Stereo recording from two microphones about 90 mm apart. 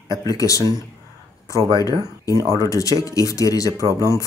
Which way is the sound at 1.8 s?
40° left (ahead or behind).